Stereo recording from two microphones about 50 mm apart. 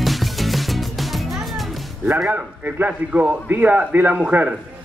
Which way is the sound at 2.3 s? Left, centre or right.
Right.